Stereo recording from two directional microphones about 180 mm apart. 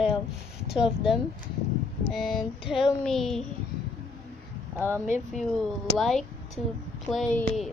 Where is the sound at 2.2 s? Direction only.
Centre (ahead or behind).